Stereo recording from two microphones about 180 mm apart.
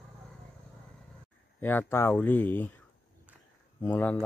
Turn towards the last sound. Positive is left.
turn(degrees=10)  # may be behind; listen again after turning